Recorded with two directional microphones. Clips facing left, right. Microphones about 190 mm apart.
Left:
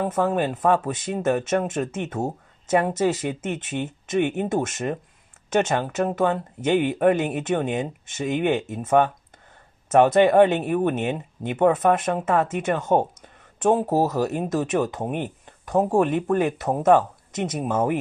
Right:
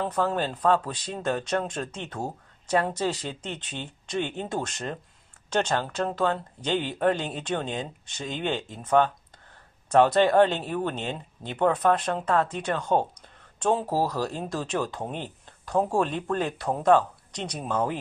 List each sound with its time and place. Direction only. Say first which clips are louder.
0.1 s speech: left 4 dB; 20° left (ahead or behind)